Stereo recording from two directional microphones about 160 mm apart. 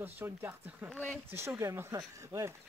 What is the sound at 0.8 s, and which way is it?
Speech, 5° left (ahead or behind).